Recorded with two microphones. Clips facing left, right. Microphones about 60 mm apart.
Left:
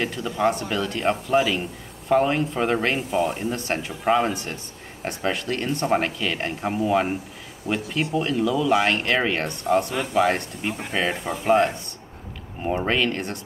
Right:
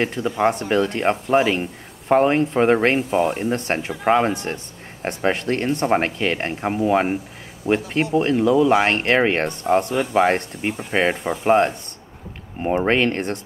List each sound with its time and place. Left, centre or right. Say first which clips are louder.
0.0 s speech: right 3 dB; right